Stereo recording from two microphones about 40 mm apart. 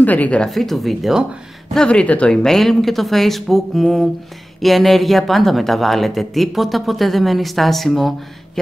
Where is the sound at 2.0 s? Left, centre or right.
Left.